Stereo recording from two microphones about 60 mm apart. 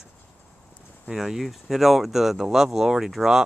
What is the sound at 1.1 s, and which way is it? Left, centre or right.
Speech, centre.